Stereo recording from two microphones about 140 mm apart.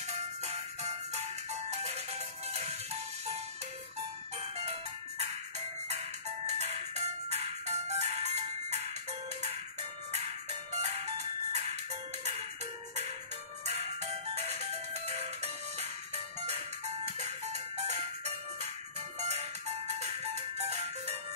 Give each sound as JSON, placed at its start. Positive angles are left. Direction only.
{"t": 0.5, "sound": "music", "side_deg": -50}
{"t": 5.9, "sound": "music", "side_deg": -50}
{"t": 10.8, "sound": "music", "side_deg": -50}
{"t": 13.7, "sound": "music", "side_deg": -50}